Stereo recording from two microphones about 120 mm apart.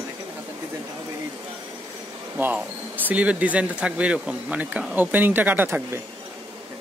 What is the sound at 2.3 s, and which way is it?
Speech, 15° right (ahead or behind).